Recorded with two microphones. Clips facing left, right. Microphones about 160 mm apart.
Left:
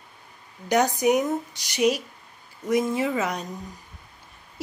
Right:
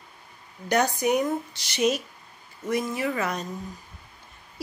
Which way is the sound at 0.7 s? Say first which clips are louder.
Left 2 dB; 15° left (ahead or behind).